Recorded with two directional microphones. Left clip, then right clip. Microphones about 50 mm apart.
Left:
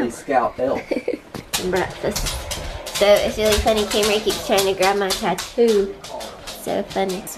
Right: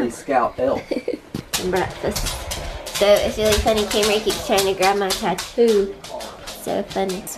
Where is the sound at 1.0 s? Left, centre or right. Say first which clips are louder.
Left 1 dB; centre.